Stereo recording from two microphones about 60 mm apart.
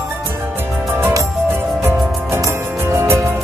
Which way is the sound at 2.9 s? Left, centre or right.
Right.